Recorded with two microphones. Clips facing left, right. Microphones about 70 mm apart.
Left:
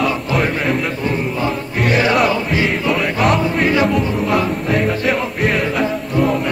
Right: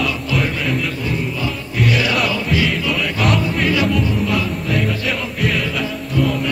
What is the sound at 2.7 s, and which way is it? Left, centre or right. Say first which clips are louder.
Music: left 3 dB; left.